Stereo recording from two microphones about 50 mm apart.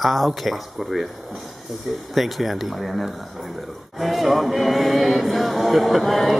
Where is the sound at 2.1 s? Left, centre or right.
Centre.